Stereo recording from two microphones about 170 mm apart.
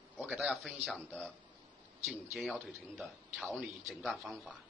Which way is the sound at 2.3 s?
Centre (ahead or behind).